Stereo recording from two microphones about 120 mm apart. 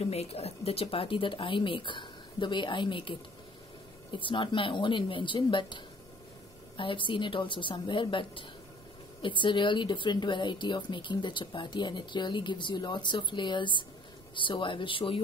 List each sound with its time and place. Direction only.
0.0 s speech: 60° left (ahead or behind); by 5.8 s 40° left (ahead or behind)
6.8 s speech: 45° left (ahead or behind)